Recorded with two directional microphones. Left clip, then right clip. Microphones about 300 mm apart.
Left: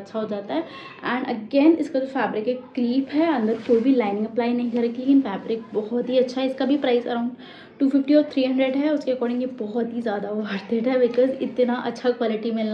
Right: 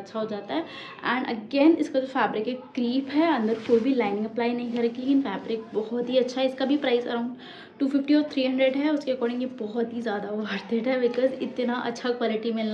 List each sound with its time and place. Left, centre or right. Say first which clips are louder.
0.1 s a woman's voice: left 3 dB; centre